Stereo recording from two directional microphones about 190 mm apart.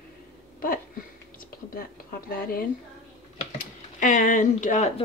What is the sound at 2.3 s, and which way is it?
A woman's voice, 50° left (ahead or behind).